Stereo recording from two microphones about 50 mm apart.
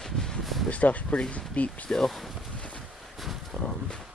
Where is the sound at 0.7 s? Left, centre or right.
Left.